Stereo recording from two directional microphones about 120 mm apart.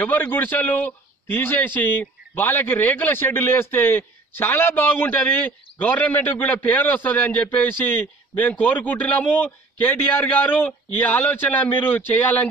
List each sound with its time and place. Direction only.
0.0 s a man's voice: 15° left (ahead or behind)